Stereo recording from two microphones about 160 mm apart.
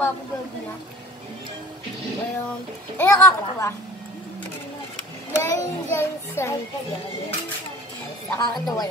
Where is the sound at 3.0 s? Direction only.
20° left (ahead or behind).